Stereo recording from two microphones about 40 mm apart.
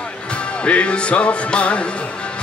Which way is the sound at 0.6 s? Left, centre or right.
Left.